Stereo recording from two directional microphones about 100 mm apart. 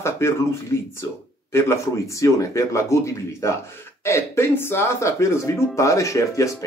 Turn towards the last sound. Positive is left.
turn(degrees=30)  # may be behind; listen again after turning